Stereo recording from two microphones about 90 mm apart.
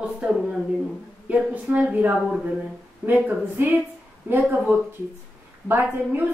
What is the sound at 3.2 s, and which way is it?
A woman's voice, 20° right (ahead or behind).